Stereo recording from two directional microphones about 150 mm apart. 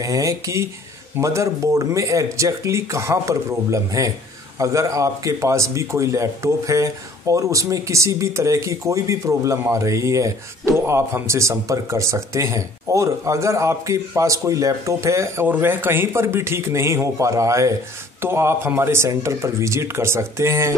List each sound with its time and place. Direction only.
0.0 s a man's voice: 20° right (ahead or behind)